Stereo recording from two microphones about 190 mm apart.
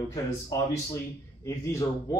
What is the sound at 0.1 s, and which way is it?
Speech, 15° left (ahead or behind).